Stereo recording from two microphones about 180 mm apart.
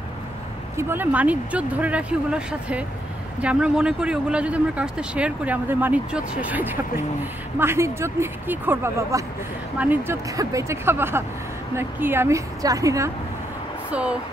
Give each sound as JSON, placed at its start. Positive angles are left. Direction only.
{"t": 0.7, "sound": "speech", "side_deg": -10}
{"t": 13.8, "sound": "speech", "side_deg": -5}